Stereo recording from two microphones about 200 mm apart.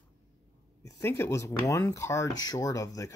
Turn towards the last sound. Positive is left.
turn(degrees=15)  # may be behind; listen again after turning